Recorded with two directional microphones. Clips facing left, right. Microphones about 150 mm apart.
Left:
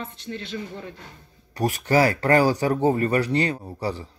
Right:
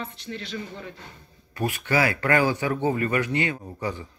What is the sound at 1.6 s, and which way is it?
Speech, 40° left (ahead or behind).